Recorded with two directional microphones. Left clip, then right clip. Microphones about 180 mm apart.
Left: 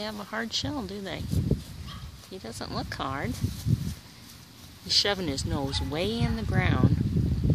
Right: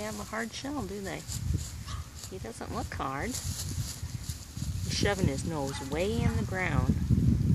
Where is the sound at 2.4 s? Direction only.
25° left (ahead or behind).